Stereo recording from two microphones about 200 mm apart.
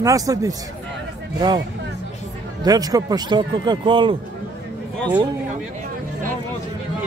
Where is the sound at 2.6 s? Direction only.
20° right (ahead or behind).